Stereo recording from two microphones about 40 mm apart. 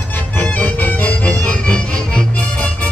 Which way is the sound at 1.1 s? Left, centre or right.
Left.